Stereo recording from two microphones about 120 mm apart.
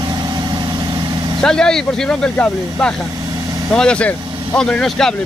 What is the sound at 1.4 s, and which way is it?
Speech, 5° left (ahead or behind).